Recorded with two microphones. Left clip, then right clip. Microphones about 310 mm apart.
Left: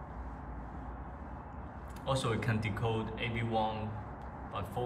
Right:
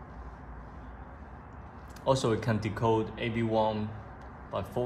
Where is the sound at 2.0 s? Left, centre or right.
Centre.